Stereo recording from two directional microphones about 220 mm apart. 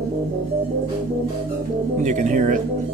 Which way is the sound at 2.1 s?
35° right (ahead or behind).